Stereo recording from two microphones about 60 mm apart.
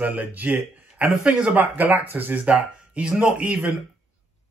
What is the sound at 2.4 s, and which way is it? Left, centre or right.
Speech, centre.